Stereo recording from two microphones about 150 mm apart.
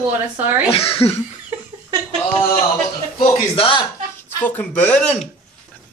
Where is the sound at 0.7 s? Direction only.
40° left (ahead or behind).